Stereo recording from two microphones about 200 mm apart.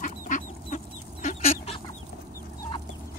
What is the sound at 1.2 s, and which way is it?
Chicken, 30° left (ahead or behind).